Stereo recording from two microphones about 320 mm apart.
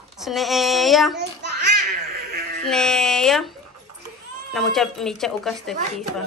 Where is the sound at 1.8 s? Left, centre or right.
Right.